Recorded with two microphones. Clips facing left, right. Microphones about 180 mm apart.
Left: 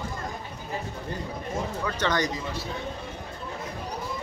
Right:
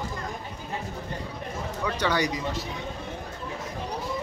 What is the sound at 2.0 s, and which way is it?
Speech, 10° right (ahead or behind).